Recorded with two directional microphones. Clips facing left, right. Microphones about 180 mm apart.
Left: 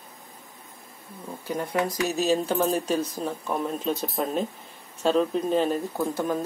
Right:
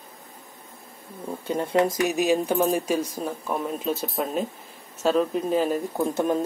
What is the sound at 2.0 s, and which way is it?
Speech, 15° right (ahead or behind).